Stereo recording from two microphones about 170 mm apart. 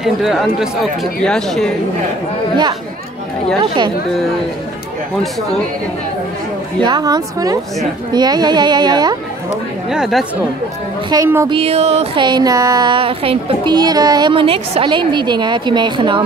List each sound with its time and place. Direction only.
0.0 s speech: centre (ahead or behind)
6.8 s speech: 25° right (ahead or behind)
9.8 s speech: 5° right (ahead or behind)
11.1 s speech: 25° right (ahead or behind)
11.4 s speech: 35° right (ahead or behind)